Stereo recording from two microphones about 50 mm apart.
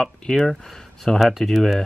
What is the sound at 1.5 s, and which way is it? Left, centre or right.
Speech, centre.